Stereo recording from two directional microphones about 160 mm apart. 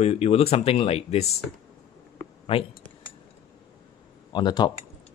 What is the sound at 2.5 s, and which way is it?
Speech, 35° left (ahead or behind).